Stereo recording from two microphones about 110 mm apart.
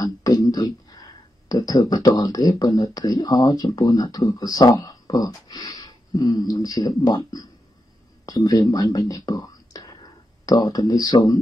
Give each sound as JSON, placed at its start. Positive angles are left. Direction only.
{"t": 0.0, "sound": "speech", "side_deg": 35}